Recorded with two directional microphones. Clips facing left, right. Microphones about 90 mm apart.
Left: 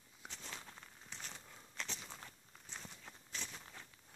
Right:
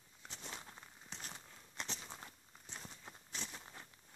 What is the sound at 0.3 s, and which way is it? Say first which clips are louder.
Walk: right 2 dB; 20° right (ahead or behind).